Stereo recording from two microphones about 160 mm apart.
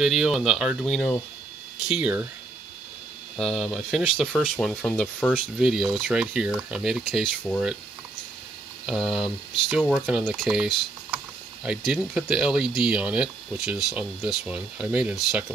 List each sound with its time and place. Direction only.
0.0 s speech: centre (ahead or behind)
3.3 s speech: 5° left (ahead or behind)
8.8 s speech: centre (ahead or behind)
10.0 s speech: 10° right (ahead or behind)
10.3 s speech: centre (ahead or behind)